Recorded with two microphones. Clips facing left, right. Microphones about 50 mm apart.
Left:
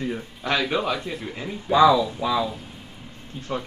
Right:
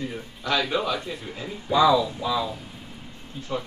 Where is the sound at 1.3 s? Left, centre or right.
Left.